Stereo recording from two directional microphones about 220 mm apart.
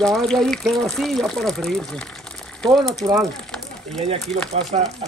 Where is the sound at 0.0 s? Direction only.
Centre (ahead or behind).